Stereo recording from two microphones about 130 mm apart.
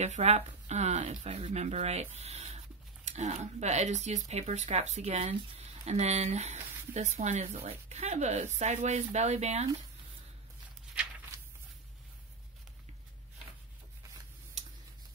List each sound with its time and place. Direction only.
0.0 s speech: 60° right (ahead or behind)